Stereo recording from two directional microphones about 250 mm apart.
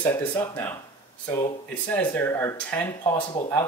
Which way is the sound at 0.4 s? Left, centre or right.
Centre.